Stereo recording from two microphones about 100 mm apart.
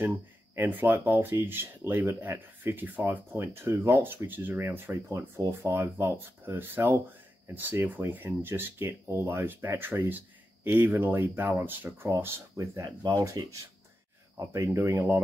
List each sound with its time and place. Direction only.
0.6 s speech: 20° right (ahead or behind)